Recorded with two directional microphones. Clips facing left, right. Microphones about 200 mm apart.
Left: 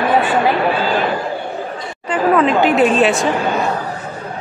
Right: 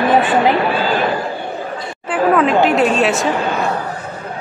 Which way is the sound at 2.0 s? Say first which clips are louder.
Even; centre (ahead or behind).